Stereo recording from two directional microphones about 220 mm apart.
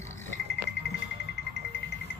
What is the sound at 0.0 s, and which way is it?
Music, 10° left (ahead or behind).